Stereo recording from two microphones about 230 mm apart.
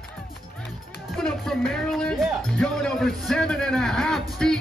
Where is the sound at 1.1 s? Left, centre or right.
Centre.